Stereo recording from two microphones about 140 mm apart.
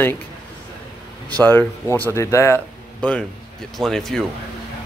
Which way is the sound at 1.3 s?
10° left (ahead or behind).